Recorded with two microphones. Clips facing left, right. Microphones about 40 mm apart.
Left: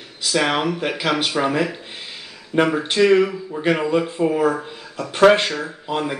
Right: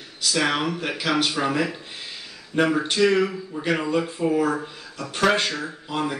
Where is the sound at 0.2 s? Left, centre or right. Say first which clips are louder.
Left 3 dB; left.